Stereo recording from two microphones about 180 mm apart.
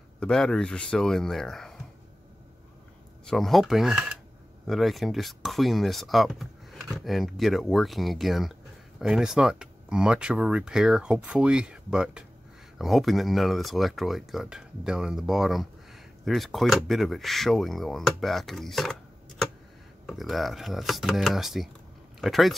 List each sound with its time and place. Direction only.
0.2 s speech: 5° left (ahead or behind)
3.3 s speech: centre (ahead or behind)
20.1 s speech: centre (ahead or behind)